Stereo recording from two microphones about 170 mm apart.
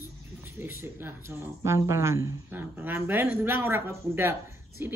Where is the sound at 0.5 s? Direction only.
15° right (ahead or behind).